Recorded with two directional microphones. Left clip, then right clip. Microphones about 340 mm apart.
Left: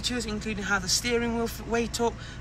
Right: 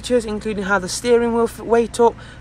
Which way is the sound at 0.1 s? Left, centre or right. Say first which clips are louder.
Right 13 dB; centre.